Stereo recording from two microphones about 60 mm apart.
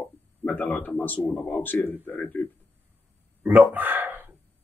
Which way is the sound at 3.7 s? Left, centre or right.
Right.